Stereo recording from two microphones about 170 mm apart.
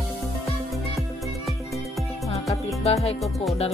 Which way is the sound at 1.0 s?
Centre (ahead or behind).